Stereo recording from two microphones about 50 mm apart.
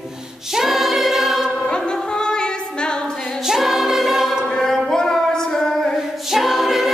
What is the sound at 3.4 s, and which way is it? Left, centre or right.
Choir, centre.